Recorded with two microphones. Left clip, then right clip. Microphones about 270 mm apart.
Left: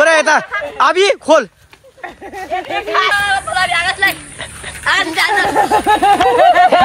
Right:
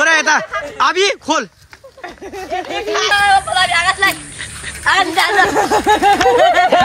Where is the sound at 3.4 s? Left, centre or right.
Right.